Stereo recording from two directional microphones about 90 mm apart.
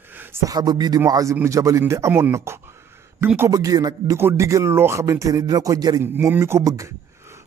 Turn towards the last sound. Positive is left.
turn(degrees=-35)  # may be behind; listen again after turning